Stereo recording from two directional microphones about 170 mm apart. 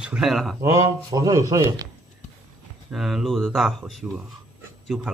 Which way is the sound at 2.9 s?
Centre (ahead or behind).